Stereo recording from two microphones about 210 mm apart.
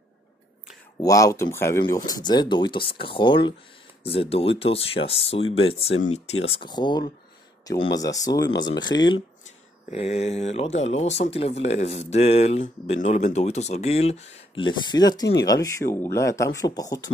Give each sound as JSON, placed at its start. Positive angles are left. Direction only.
{"t": 1.0, "sound": "speech", "side_deg": 15}
{"t": 9.8, "sound": "speech", "side_deg": 30}